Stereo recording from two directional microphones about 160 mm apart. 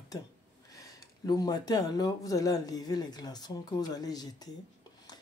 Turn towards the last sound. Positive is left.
turn(degrees=25)  # may be behind; listen again after turning